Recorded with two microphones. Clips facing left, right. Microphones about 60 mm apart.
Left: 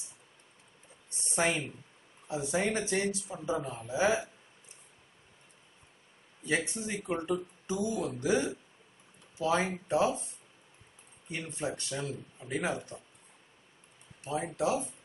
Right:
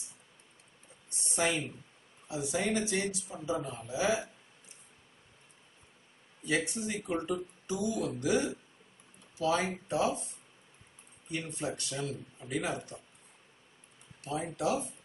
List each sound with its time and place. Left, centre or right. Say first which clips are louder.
1.3 s speech: left 1 dB; left
6.4 s speech: even; left
11.6 s speech: left 3 dB; left
14.2 s speech: left 1 dB; left